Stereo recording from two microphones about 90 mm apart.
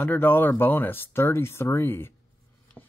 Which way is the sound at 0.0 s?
20° left (ahead or behind).